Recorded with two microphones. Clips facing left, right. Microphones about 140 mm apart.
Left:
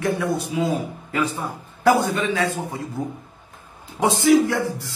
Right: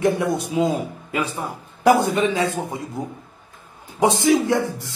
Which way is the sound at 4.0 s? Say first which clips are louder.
Left 1 dB; 20° right (ahead or behind).